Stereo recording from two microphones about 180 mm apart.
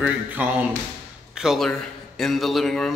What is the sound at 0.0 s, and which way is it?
A man's voice, 10° right (ahead or behind).